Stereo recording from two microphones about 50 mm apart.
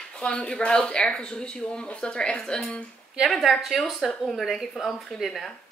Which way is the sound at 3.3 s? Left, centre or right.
Centre.